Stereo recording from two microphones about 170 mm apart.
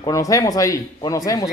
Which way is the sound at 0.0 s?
20° left (ahead or behind).